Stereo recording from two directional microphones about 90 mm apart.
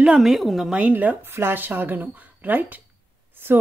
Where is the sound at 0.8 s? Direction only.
15° right (ahead or behind).